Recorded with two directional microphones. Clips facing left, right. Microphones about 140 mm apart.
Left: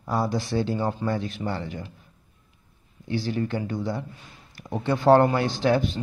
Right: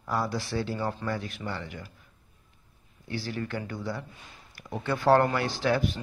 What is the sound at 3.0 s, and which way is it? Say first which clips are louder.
Speech: left 7 dB; 20° left (ahead or behind).